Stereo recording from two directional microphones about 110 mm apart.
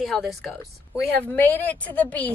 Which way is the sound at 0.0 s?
Centre (ahead or behind).